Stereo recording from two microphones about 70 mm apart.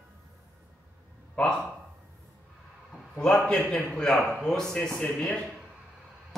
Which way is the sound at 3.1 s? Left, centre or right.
Centre.